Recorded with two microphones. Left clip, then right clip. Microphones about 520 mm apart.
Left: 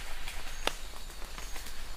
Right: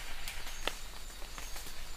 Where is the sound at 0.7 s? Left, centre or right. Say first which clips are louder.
Left 5 dB; left.